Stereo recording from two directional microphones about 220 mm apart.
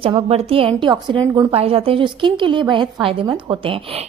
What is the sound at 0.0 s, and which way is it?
A woman's voice, 25° right (ahead or behind).